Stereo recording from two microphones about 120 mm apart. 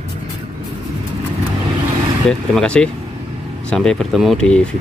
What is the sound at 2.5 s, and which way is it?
Speech, 10° left (ahead or behind).